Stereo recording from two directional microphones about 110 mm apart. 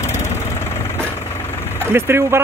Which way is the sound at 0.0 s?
25° left (ahead or behind).